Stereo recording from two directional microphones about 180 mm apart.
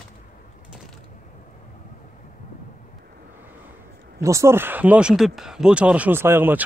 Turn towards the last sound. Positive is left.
turn(degrees=-10)  # may be behind; listen again after turning